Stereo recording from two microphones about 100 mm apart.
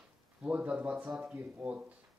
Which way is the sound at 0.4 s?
15° right (ahead or behind).